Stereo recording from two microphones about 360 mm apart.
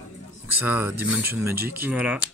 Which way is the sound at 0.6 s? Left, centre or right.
Centre.